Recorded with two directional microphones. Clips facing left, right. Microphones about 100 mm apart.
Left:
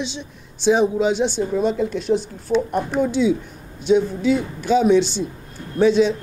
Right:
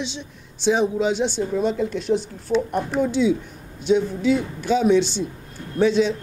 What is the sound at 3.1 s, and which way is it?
Speech, 15° left (ahead or behind).